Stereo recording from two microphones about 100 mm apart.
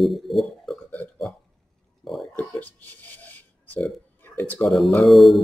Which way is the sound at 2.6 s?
15° left (ahead or behind).